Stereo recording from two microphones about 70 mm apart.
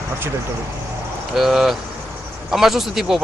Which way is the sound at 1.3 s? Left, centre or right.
Centre.